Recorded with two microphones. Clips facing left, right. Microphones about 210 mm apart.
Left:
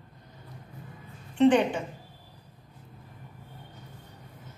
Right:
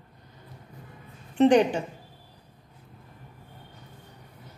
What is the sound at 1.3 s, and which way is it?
Speech, 40° right (ahead or behind).